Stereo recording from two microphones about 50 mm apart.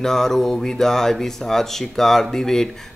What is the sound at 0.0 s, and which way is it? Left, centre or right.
Speech, centre.